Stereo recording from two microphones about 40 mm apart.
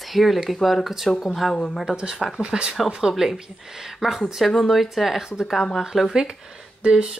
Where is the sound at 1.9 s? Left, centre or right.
Centre.